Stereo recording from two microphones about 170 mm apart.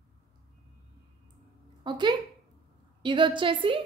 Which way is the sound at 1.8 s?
25° right (ahead or behind).